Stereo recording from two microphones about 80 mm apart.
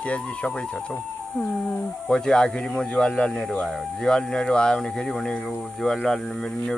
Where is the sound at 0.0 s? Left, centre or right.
Centre.